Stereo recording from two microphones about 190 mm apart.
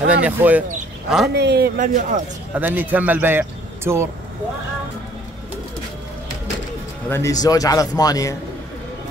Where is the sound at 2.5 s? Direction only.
10° right (ahead or behind).